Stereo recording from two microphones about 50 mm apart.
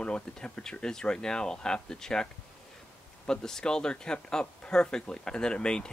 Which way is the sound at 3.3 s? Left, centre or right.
Centre.